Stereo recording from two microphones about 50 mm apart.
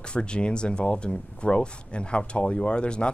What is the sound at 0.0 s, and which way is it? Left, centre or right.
Speech, centre.